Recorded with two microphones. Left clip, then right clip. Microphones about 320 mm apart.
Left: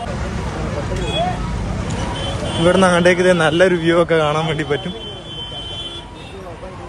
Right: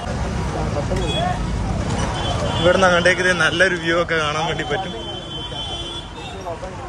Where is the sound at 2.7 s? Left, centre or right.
Centre.